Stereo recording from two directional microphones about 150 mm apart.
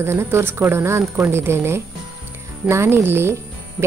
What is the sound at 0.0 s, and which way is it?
A woman's voice, 15° right (ahead or behind).